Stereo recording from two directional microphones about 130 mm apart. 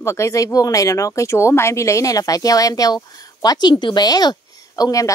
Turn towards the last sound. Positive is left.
turn(degrees=25)  # may be behind; listen again after turning